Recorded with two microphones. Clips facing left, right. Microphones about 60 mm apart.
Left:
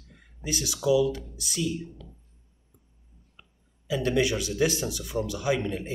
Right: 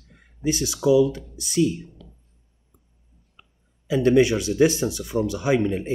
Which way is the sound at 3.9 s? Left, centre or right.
Right.